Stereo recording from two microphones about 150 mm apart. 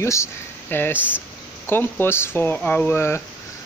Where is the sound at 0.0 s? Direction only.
20° left (ahead or behind).